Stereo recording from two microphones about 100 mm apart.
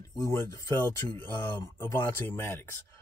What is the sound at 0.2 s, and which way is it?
Speech, 30° left (ahead or behind).